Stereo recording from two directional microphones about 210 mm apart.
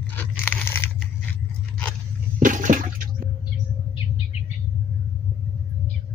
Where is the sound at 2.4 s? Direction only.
40° right (ahead or behind).